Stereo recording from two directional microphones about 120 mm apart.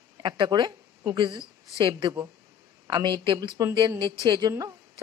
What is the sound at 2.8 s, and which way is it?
A woman's voice, 40° right (ahead or behind).